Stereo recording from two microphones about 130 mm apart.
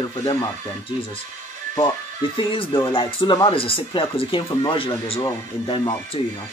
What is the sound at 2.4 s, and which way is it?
Speech, 45° left (ahead or behind).